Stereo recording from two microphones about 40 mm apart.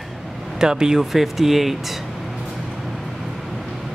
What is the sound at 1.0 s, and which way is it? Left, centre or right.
Speech, centre.